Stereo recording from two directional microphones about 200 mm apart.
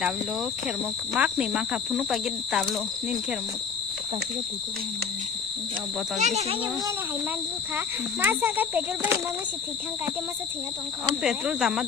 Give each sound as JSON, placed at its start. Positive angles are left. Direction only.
{"t": 1.1, "sound": "speech", "side_deg": -5}
{"t": 6.1, "sound": "speech", "side_deg": -35}
{"t": 7.7, "sound": "speech", "side_deg": -10}
{"t": 11.2, "sound": "speech", "side_deg": -5}